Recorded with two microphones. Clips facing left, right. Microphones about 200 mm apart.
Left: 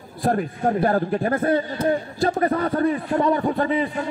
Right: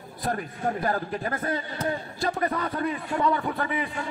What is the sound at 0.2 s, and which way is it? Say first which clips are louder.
A man's voice: left 7 dB; 45° left (ahead or behind).